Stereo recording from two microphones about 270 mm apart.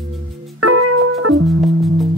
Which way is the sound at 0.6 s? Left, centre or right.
Right.